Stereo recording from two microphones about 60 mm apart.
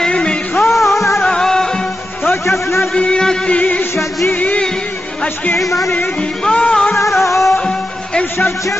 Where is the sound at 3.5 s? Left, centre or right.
Left.